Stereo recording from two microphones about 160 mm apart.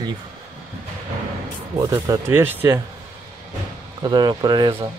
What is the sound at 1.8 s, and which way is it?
Speech, 20° right (ahead or behind).